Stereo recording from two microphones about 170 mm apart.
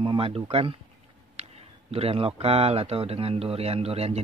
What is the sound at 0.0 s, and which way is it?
Speech, 30° right (ahead or behind).